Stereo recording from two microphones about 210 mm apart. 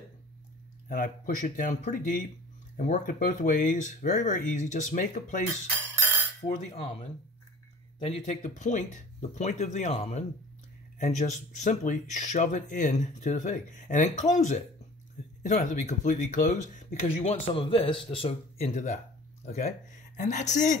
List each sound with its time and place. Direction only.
0.8 s speech: 40° left (ahead or behind)
5.8 s a sound: 10° left (ahead or behind)
8.0 s speech: 30° left (ahead or behind)